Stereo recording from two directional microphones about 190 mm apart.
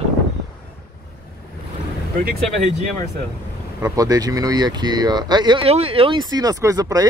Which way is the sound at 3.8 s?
20° right (ahead or behind).